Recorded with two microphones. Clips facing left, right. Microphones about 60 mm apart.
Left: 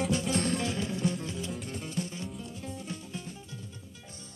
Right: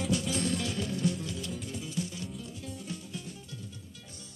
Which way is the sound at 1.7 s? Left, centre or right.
Left.